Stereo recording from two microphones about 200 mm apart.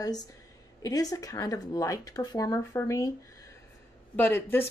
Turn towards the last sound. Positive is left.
turn(degrees=10)  # may be behind; listen again after turning